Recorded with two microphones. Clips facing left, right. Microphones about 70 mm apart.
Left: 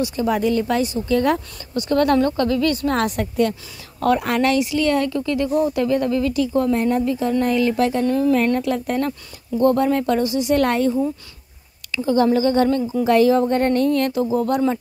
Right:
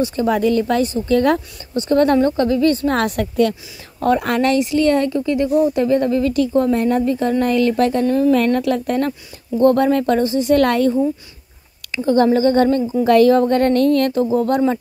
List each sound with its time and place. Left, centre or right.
0.0 s speech: right
1.7 s a woman's voice: right
2.9 s a woman's voice: right
4.2 s speech: right
5.2 s a woman's voice: right
6.7 s speech: right
8.5 s speech: right
10.5 s a woman's voice: right
12.0 s speech: right
13.0 s a woman's voice: right
14.1 s speech: right